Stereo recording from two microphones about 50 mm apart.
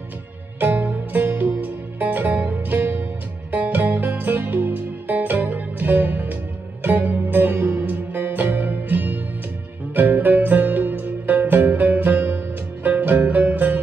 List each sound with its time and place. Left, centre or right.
0.6 s music: right